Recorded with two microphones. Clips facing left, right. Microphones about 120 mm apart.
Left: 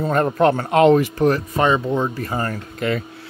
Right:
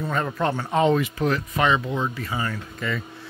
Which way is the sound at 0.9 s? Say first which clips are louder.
Left 6 dB; 45° left (ahead or behind).